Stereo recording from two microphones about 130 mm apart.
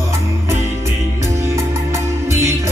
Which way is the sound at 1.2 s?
20° right (ahead or behind).